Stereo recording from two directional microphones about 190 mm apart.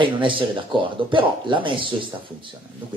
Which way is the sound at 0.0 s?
25° right (ahead or behind).